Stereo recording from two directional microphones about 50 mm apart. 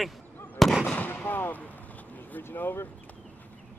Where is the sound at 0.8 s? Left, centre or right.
Left.